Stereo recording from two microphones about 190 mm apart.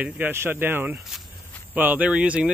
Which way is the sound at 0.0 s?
10° right (ahead or behind).